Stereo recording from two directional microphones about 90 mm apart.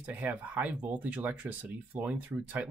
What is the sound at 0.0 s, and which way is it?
Speech, 15° right (ahead or behind).